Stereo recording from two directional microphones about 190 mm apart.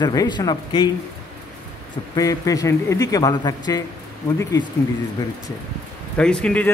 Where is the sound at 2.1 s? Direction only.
15° left (ahead or behind).